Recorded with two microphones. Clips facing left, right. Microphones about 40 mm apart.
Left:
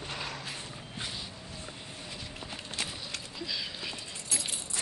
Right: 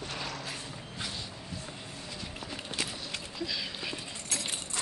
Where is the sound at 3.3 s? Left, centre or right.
Centre.